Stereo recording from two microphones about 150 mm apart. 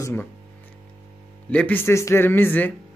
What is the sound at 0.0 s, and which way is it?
Speech, 15° left (ahead or behind).